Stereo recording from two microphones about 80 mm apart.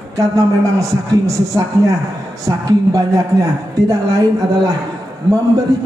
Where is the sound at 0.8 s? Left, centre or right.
Right.